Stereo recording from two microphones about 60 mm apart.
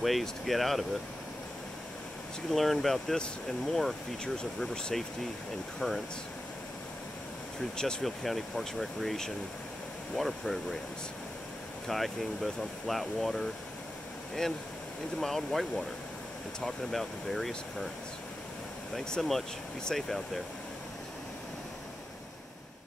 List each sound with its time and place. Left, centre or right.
0.0 s speech: centre
2.5 s speech: centre
7.7 s speech: centre
11.9 s speech: centre
15.1 s speech: centre
18.9 s speech: centre